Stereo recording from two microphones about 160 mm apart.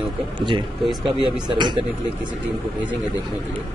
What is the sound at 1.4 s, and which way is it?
Speech, 30° right (ahead or behind).